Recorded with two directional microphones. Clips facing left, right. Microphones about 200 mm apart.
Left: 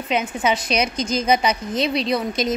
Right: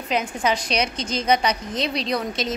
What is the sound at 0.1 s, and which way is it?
A woman's voice, 5° left (ahead or behind).